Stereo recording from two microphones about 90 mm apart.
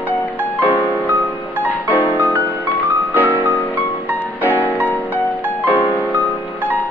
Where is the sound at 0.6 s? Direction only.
20° right (ahead or behind).